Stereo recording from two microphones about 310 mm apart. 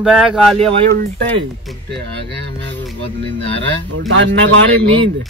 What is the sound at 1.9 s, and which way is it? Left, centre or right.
Speech, right.